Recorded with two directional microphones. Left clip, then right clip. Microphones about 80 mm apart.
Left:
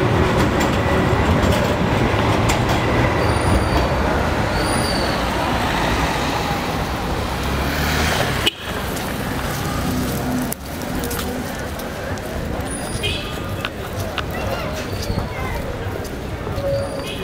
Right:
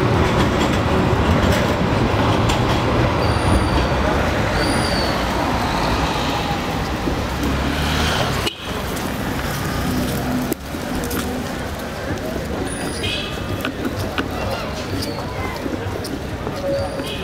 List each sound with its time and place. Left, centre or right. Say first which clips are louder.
0.0 s vehicle: even; left
2.0 s train: even; left
5.0 s vehicle: even; left
7.8 s vehicle: left 1 dB; left